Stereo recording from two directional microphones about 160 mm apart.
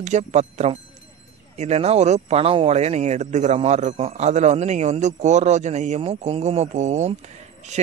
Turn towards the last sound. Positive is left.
turn(degrees=-45)  # may be behind; listen again after turning